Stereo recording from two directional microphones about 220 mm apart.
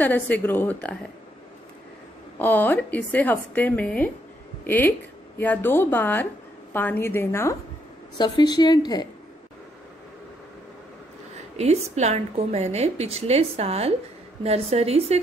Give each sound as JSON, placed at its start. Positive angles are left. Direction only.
{"t": 0.0, "sound": "a woman's voice", "side_deg": 5}
{"t": 2.3, "sound": "a woman's voice", "side_deg": 10}
{"t": 11.5, "sound": "a woman's voice", "side_deg": -30}